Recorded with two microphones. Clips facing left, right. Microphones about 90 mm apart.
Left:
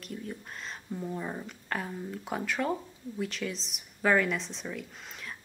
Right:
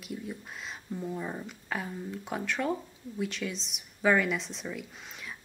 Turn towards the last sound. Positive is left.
turn(degrees=0)  # may be behind; listen again after turning